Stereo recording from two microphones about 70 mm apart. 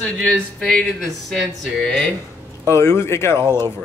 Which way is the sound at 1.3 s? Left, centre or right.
Centre.